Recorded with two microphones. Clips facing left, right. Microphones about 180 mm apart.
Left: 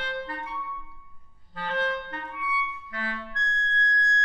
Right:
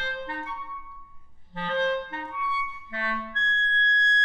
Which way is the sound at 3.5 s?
30° right (ahead or behind).